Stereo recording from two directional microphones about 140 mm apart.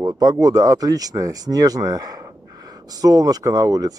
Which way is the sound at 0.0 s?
25° right (ahead or behind).